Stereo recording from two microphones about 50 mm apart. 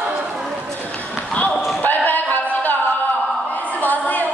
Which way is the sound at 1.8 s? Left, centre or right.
Left.